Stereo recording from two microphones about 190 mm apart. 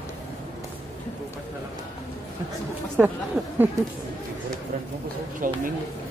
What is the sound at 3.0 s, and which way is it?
Speech, 10° right (ahead or behind).